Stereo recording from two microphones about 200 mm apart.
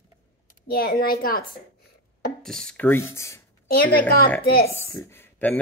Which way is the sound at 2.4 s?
5° left (ahead or behind).